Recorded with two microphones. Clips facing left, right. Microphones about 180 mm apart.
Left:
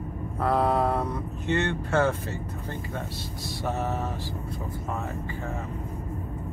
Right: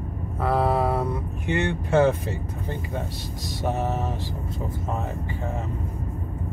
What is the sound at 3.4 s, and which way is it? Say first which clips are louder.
Music: right 3 dB; 20° right (ahead or behind).